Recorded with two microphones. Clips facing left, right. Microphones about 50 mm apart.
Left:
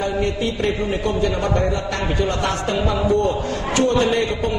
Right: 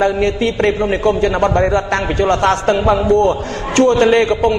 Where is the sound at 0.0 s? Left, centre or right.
Right.